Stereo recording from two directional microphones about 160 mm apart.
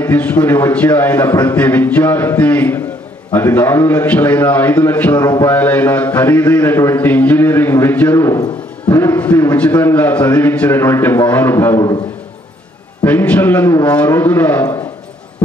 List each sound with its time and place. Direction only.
0.0 s a man's voice: 10° left (ahead or behind)
5.2 s a man's voice: 20° left (ahead or behind)
5.5 s a man's voice: 10° left (ahead or behind)
13.0 s a man's voice: 10° left (ahead or behind)